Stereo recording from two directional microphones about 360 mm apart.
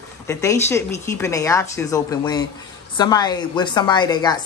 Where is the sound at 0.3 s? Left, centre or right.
Centre.